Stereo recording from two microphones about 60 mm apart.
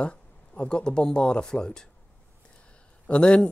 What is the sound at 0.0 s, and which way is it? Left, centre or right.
Speech, centre.